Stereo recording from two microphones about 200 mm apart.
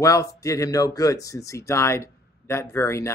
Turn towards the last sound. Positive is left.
turn(degrees=15)  # may be behind; listen again after turning